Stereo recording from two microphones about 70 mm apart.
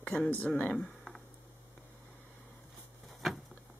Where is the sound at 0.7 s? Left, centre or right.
Centre.